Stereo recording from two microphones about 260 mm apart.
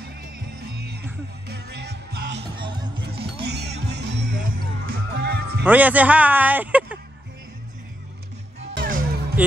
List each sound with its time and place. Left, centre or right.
0.7 s music: right
2.6 s music: centre
3.1 s music: right
5.7 s a man's voice: centre
8.7 s music: right